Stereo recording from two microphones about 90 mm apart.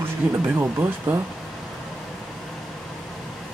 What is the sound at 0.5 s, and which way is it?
Speech, 25° right (ahead or behind).